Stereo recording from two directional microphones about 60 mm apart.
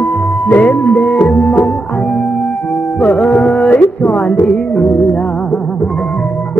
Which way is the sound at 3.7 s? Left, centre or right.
Left.